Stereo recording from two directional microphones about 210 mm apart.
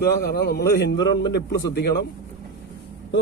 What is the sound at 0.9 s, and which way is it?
Speech, 20° left (ahead or behind).